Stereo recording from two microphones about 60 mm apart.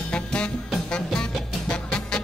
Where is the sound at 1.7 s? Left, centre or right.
Centre.